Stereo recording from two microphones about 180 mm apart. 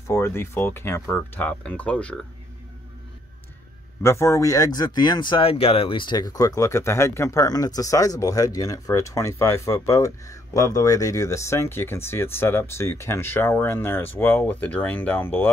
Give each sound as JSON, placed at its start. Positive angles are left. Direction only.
{"t": 0.0, "sound": "speech", "side_deg": 15}
{"t": 4.0, "sound": "speech", "side_deg": 15}